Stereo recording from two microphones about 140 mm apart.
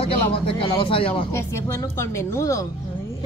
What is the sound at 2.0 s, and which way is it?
Speech, 20° left (ahead or behind).